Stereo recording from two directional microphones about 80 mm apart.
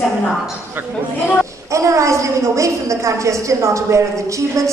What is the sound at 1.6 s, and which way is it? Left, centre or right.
A woman's voice, right.